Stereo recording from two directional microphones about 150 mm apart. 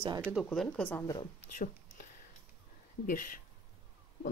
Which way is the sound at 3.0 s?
65° left (ahead or behind).